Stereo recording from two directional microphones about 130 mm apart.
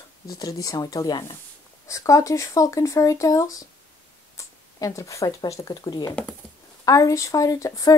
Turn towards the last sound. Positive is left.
turn(degrees=25)  # may be behind; listen again after turning